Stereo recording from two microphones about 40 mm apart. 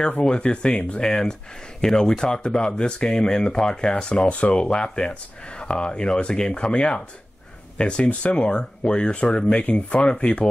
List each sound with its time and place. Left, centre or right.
0.2 s speech: left
0.9 s speech: centre
9.6 s speech: left